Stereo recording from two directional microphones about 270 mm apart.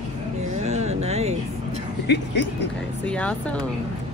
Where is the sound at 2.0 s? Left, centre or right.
Left.